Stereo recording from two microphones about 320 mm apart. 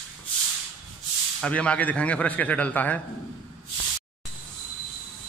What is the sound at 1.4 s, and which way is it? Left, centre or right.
Speech, centre.